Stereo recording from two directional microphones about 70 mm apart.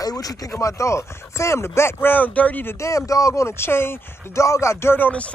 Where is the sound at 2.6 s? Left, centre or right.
Left.